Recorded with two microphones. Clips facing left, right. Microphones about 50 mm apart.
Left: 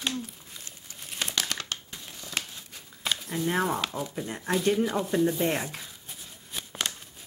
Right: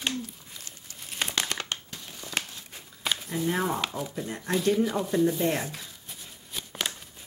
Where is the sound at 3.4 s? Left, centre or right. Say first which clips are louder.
Left 1 dB; centre.